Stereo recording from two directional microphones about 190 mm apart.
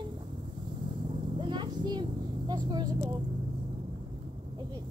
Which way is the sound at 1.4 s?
25° right (ahead or behind).